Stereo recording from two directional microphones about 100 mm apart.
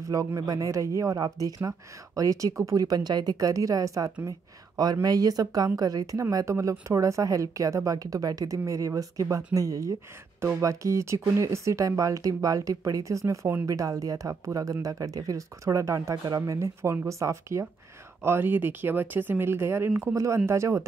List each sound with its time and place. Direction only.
0.1 s speech: 35° right (ahead or behind)